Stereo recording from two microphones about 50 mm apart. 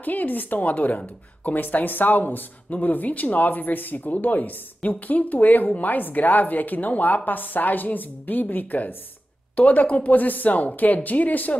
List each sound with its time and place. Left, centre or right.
0.0 s a woman's voice: left